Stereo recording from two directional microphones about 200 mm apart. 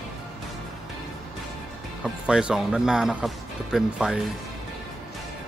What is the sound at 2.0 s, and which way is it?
Speech, 5° right (ahead or behind).